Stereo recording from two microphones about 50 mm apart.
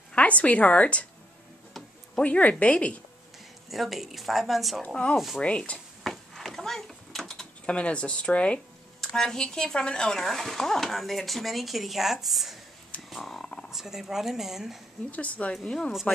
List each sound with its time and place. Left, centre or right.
0.1 s a woman's voice: left
2.2 s speech: left
3.7 s speech: centre
4.8 s speech: left
6.0 s a sound: centre
7.6 s speech: left
9.1 s speech: centre
13.1 s purr: centre
13.7 s speech: centre
15.0 s speech: left
15.5 s speech: centre